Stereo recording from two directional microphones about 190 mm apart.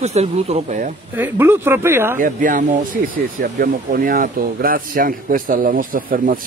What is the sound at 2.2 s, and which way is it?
Speech, 45° right (ahead or behind).